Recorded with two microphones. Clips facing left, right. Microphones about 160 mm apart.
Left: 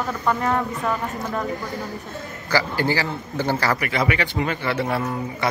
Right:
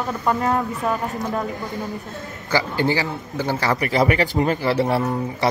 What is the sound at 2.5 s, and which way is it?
Speech, 20° right (ahead or behind).